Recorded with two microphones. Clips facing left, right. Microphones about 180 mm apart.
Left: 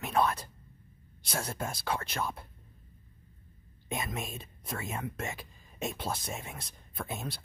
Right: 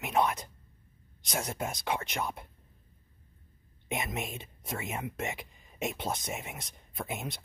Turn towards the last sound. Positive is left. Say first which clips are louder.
# right 1 dB
turn(degrees=-20)  # may be behind; listen again after turning